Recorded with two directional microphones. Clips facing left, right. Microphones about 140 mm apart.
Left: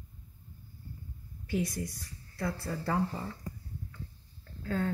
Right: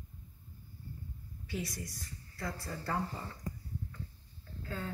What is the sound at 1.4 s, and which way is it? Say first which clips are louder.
Speech: left 7 dB; 55° left (ahead or behind).